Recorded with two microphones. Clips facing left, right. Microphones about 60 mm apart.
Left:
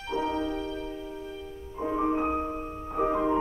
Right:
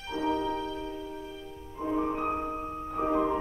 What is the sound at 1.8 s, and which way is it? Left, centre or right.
Music, centre.